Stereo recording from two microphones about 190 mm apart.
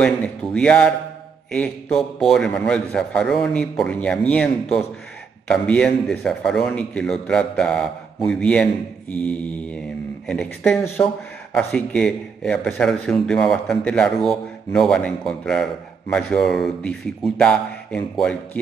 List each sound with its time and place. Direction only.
0.0 s a man's voice: 5° left (ahead or behind)
9.1 s mantra: 5° left (ahead or behind)
10.2 s a man's voice: 5° left (ahead or behind)